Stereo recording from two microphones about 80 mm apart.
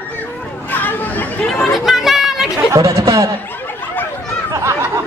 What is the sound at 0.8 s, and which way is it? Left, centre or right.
Chatter, left.